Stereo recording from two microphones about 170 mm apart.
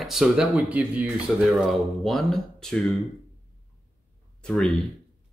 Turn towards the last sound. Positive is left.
turn(degrees=5)  # may be behind; listen again after turning